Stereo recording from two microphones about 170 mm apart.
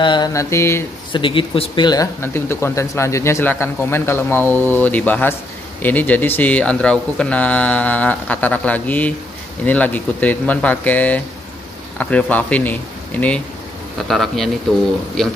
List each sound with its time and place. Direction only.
0.0 s speech: 25° left (ahead or behind)
1.1 s speech: 30° left (ahead or behind)
2.2 s speech: 15° left (ahead or behind)